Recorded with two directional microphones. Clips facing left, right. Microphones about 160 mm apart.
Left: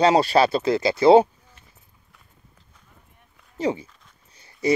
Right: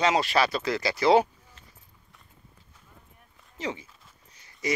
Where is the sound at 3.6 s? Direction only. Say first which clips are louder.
Left 9 dB; 35° left (ahead or behind).